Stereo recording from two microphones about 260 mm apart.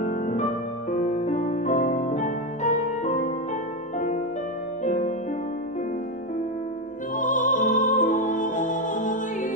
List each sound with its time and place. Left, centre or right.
0.1 s music: left
4.8 s music: left
7.2 s music: left